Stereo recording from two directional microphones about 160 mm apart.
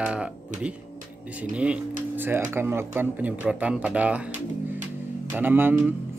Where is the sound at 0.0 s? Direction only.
5° right (ahead or behind).